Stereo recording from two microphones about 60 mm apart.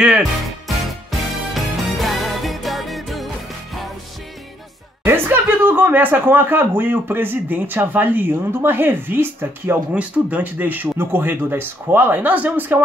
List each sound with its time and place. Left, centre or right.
0.2 s music: centre
5.0 s speech: right
9.9 s speech: right